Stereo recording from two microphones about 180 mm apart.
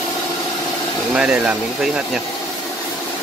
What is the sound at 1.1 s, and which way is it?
Speech, 5° right (ahead or behind).